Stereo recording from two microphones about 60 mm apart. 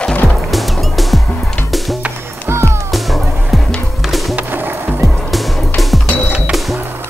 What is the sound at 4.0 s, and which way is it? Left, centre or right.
Music, centre.